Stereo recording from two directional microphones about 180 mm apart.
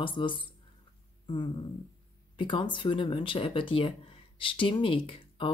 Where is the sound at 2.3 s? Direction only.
25° left (ahead or behind).